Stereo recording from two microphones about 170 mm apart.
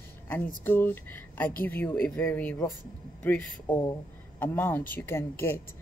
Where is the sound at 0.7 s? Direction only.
10° left (ahead or behind).